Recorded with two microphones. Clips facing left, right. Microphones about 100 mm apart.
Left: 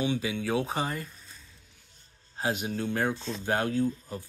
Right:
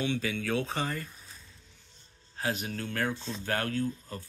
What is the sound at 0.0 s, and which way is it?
Speech, 15° left (ahead or behind).